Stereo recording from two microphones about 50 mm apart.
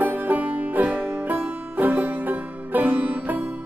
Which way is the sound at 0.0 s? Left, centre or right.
Right.